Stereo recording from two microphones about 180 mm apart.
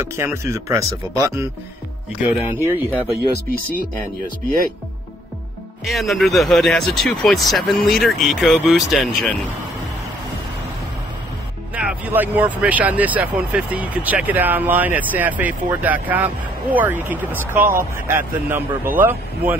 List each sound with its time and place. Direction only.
0.0 s speech: 15° right (ahead or behind)
5.9 s speech: centre (ahead or behind)
11.7 s speech: 10° right (ahead or behind)